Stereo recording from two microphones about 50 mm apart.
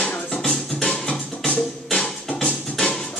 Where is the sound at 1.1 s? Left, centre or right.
Left.